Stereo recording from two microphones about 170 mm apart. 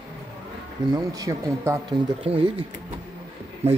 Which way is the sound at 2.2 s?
35° right (ahead or behind).